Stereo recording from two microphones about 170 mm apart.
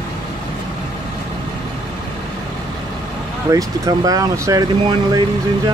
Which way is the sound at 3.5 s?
20° right (ahead or behind).